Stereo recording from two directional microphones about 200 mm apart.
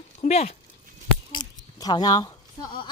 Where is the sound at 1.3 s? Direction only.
20° left (ahead or behind).